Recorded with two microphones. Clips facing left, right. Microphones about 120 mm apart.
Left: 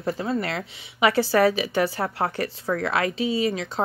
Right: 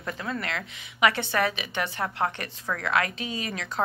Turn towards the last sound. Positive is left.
turn(degrees=30)  # may be behind; listen again after turning